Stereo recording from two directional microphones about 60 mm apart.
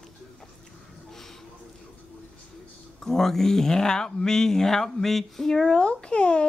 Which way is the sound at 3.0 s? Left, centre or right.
Centre.